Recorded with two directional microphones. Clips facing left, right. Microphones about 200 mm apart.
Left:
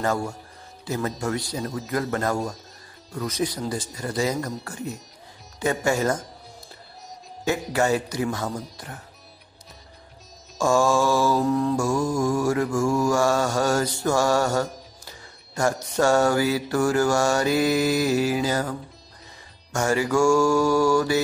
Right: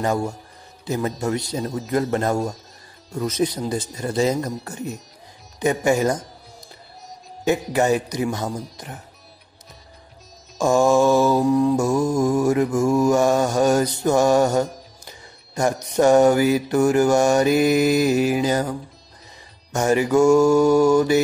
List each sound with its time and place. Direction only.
0.0 s speech: 20° right (ahead or behind)
0.8 s mantra: 20° right (ahead or behind)
5.6 s speech: 20° right (ahead or behind)
7.7 s mantra: 20° right (ahead or behind)
8.5 s speech: centre (ahead or behind)
8.7 s mantra: 20° right (ahead or behind)
10.6 s mantra: 20° right (ahead or behind)